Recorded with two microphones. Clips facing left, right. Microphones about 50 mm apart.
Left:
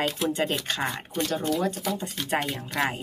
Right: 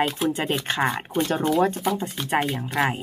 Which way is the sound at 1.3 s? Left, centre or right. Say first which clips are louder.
Right 6 dB; right.